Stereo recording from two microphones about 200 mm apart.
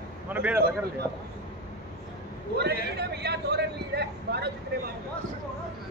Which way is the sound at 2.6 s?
55° right (ahead or behind).